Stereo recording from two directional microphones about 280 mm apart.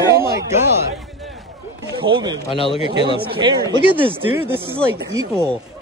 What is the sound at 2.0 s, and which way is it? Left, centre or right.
Speech, centre.